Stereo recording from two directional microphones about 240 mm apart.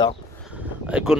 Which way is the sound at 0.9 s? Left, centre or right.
Centre.